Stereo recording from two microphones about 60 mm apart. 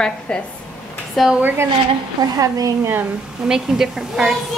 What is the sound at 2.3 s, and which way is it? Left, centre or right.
Speech, right.